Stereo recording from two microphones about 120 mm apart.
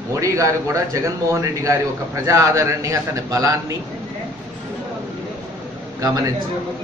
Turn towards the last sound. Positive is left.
turn(degrees=-30)  # may be behind; listen again after turning